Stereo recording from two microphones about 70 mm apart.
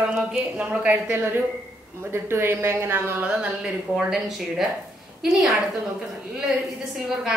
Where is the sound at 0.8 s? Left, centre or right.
Right.